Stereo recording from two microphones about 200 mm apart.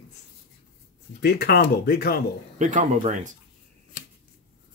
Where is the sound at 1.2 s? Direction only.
55° left (ahead or behind).